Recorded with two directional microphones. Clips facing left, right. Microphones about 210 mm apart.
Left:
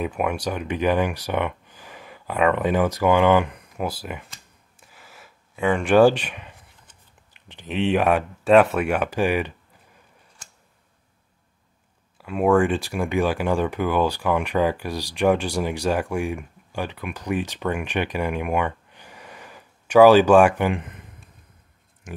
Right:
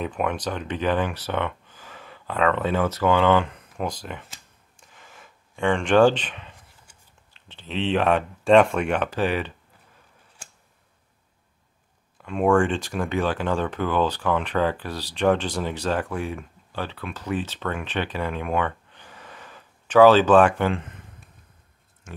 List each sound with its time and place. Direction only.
0.0 s speech: 10° left (ahead or behind)
4.3 s a sound: 5° left (ahead or behind)
7.3 s speech: 15° left (ahead or behind)
12.2 s speech: 5° left (ahead or behind)
22.1 s speech: 15° left (ahead or behind)